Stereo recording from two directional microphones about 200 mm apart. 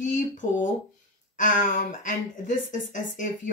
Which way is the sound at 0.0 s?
40° left (ahead or behind).